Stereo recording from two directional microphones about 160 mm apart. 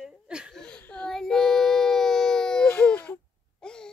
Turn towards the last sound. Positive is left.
turn(degrees=5)  # may be behind; listen again after turning